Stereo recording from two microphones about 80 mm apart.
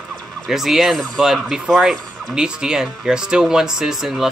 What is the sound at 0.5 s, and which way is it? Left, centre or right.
Speech, centre.